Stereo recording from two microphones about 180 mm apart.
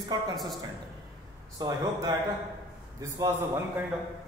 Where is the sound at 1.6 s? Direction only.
20° right (ahead or behind).